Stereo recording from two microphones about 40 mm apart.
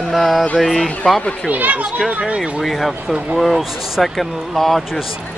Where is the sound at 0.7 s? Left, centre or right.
Centre.